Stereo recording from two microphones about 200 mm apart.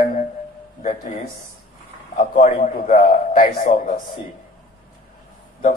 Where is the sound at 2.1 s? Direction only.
40° left (ahead or behind).